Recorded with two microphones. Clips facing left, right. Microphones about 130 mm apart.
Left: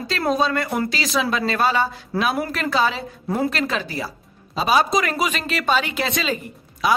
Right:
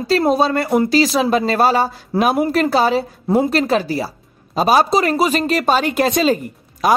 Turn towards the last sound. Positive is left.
turn(degrees=-45)  # may be behind; listen again after turning